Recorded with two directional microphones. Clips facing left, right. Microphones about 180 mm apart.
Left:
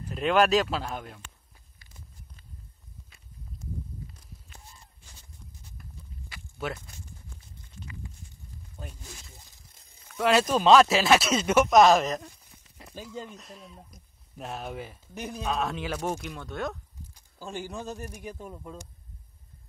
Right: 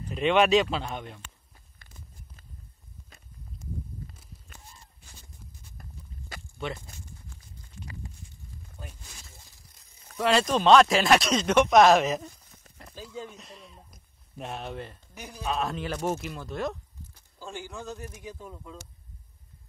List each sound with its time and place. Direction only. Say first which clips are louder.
0.0 s speech: right 1 dB; centre (ahead or behind)
5.8 s a sound: right 1 dB; 45° right (ahead or behind)
7.8 s walk: right 1 dB; 35° right (ahead or behind)
10.1 s speech: left 1 dB; 5° left (ahead or behind)
13.4 s speech: left 2 dB; centre (ahead or behind)
17.1 s speech: left 2 dB; 15° left (ahead or behind)